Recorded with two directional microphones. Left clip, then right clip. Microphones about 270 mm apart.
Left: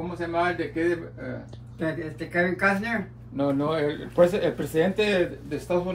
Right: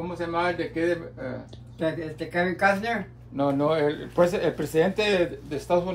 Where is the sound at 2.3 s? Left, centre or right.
Right.